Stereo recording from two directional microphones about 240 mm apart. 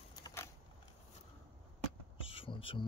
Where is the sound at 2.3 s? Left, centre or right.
Left.